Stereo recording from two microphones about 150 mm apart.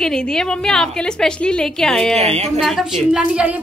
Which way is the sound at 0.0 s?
5° left (ahead or behind).